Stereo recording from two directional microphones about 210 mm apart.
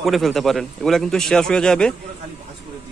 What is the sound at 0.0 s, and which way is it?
A man's voice, centre (ahead or behind).